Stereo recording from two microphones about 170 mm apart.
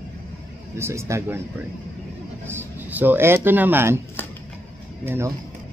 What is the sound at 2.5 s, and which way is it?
Speech, 10° right (ahead or behind).